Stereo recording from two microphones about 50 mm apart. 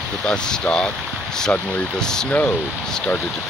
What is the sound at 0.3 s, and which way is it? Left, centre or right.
Speech, centre.